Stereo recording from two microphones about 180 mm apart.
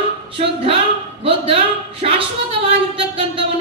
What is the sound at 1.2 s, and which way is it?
Speech, 30° right (ahead or behind).